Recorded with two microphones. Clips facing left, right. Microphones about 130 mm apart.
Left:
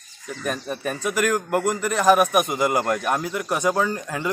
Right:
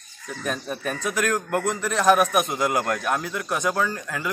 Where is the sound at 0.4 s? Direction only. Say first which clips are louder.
Left 1 dB; 5° left (ahead or behind).